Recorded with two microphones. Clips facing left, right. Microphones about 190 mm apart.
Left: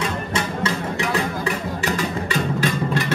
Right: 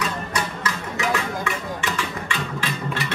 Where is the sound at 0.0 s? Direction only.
30° left (ahead or behind).